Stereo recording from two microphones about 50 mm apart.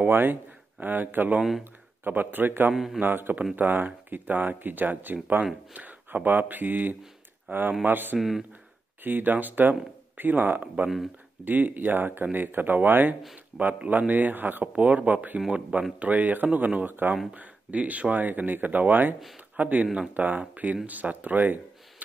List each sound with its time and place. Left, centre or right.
0.1 s speech: right
2.7 s speech: centre
3.0 s speech: right
8.2 s speech: centre
9.0 s speech: right